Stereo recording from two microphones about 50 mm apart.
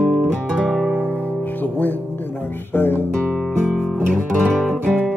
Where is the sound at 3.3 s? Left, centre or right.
Centre.